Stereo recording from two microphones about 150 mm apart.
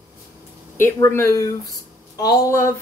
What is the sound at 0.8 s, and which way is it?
A woman's voice, 15° left (ahead or behind).